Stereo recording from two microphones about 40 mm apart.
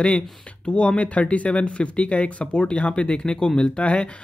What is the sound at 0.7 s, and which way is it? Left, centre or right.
Speech, left.